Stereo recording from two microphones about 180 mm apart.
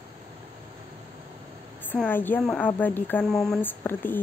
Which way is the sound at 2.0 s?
10° left (ahead or behind).